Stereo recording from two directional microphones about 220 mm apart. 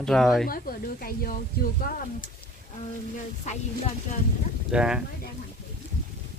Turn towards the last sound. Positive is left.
turn(degrees=-5)  # may be behind; listen again after turning